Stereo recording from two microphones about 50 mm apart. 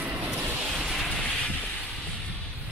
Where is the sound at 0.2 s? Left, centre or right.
Right.